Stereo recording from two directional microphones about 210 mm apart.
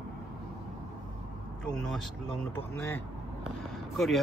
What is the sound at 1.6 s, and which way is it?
Speech, 5° left (ahead or behind).